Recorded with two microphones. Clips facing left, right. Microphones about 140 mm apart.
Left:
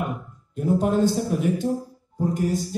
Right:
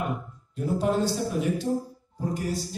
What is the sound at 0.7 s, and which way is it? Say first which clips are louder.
A man's voice: left 4 dB; 50° left (ahead or behind).